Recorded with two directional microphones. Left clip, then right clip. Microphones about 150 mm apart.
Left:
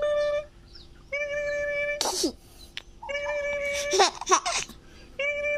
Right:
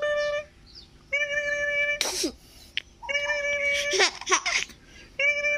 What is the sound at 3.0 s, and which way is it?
Cat, 5° left (ahead or behind).